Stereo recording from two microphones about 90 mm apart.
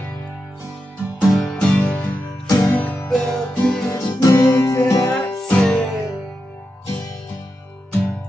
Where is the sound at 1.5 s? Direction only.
20° left (ahead or behind).